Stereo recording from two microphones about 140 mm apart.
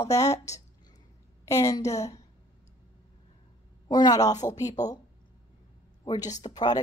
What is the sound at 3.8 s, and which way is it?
Speech, 30° left (ahead or behind).